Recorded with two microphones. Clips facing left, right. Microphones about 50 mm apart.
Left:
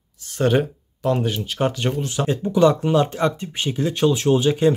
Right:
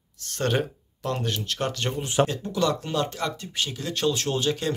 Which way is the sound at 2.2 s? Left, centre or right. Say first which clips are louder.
Left 8 dB; left.